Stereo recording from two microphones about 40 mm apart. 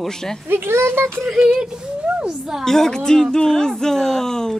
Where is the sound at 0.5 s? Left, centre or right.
Right.